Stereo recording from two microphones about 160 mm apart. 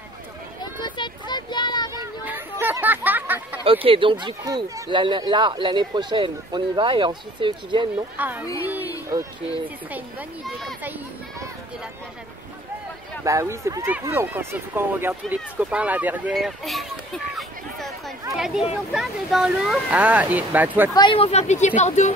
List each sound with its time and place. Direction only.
0.6 s a sound: 30° left (ahead or behind)
2.6 s chatter: 10° right (ahead or behind)
3.6 s speech: 35° right (ahead or behind)
8.2 s speech: 10° right (ahead or behind)
10.4 s speech: centre (ahead or behind)
10.8 s a sound: 10° right (ahead or behind)
13.2 s speech: 20° right (ahead or behind)
16.3 s a sound: centre (ahead or behind)
18.3 s speech: centre (ahead or behind)
20.9 s speech: 30° left (ahead or behind); by 22.1 s 45° left (ahead or behind)